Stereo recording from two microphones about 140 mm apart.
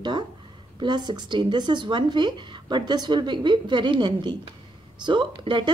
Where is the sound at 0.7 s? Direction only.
30° right (ahead or behind).